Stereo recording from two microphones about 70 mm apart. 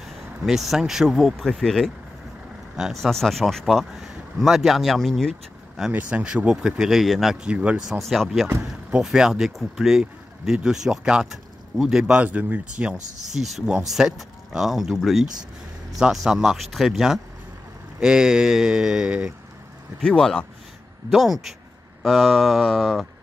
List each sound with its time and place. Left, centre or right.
0.0 s speech: centre
2.7 s speech: centre
3.0 s speech: centre
5.9 s speech: centre
7.3 s speech: centre
8.0 s speech: centre
20.0 s speech: centre
21.1 s speech: centre